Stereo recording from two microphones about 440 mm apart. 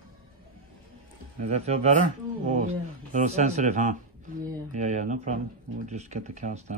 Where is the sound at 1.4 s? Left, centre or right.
Centre.